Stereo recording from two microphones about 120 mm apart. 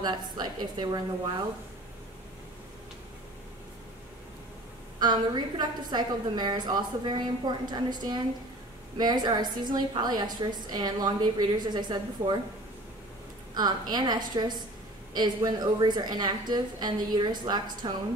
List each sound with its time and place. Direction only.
0.0 s a woman's voice: 35° right (ahead or behind)
4.9 s a woman's voice: 40° right (ahead or behind)
13.6 s a woman's voice: 35° right (ahead or behind)